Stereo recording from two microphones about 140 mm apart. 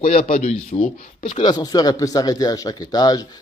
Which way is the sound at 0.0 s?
50° left (ahead or behind).